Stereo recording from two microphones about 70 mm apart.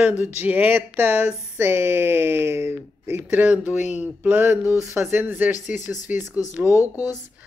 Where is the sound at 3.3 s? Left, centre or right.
Centre.